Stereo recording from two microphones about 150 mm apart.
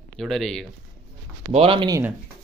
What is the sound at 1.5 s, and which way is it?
Speech, 40° right (ahead or behind).